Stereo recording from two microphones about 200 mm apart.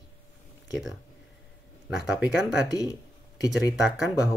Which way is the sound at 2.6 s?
20° left (ahead or behind).